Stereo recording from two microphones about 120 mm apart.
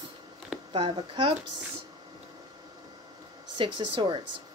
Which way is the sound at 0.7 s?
45° right (ahead or behind).